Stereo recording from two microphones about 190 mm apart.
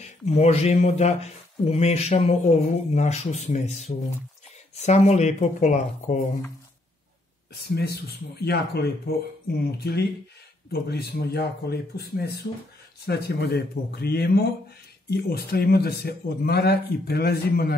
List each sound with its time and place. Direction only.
0.0 s speech: 35° left (ahead or behind)
7.6 s speech: 55° left (ahead or behind)